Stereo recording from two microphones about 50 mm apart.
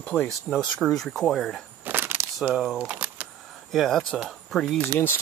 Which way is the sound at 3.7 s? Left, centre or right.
Centre.